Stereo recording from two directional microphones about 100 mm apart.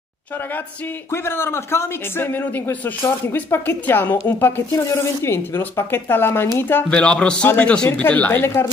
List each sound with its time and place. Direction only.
1.1 s speech: 25° left (ahead or behind)
6.9 s speech: 10° left (ahead or behind)